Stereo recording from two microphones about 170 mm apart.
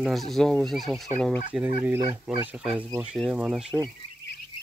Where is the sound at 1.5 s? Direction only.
10° right (ahead or behind).